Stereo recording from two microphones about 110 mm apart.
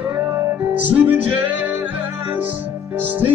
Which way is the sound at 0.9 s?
15° right (ahead or behind).